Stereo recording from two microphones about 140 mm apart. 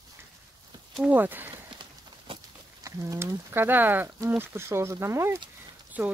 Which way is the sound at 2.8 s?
25° right (ahead or behind).